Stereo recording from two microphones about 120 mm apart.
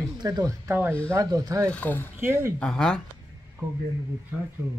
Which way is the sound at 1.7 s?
15° left (ahead or behind).